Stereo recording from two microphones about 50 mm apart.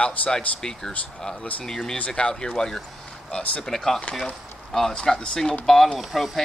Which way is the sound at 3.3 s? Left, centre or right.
Left.